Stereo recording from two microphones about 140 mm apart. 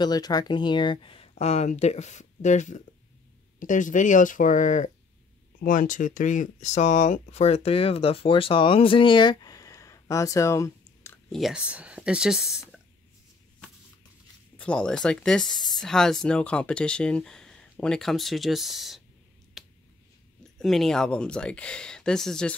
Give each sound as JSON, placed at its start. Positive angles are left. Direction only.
{"t": 0.0, "sound": "speech", "side_deg": 30}
{"t": 11.2, "sound": "speech", "side_deg": 0}
{"t": 14.6, "sound": "speech", "side_deg": 5}
{"t": 19.6, "sound": "a sound", "side_deg": 0}
{"t": 20.5, "sound": "speech", "side_deg": 0}